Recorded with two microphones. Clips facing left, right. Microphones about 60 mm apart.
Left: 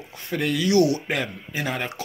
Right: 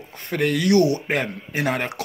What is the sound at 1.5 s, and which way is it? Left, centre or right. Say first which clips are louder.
Speech: right 5 dB; right.